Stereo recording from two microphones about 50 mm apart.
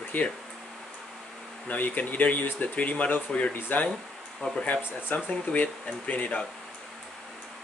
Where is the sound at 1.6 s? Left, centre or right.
Left.